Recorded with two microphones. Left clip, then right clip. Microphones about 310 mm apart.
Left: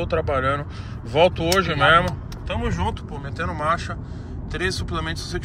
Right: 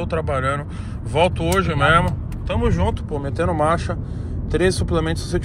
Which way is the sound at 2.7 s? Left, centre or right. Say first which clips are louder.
Right 4 dB; centre.